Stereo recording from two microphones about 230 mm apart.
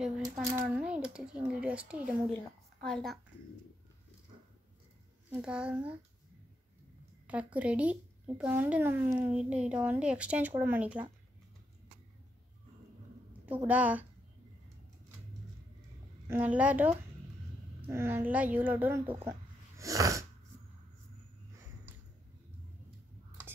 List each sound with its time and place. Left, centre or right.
0.2 s a child's voice: centre
5.3 s a child's voice: centre
7.5 s a child's voice: centre
13.5 s a woman's voice: centre
16.3 s a woman's voice: centre
19.8 s sneeze: centre